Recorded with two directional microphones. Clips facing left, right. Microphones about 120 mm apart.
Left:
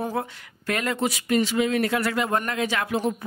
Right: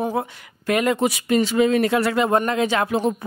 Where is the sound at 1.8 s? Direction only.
25° right (ahead or behind).